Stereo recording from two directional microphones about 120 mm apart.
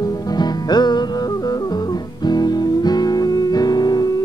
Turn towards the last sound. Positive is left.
turn(degrees=35)  # may be behind; listen again after turning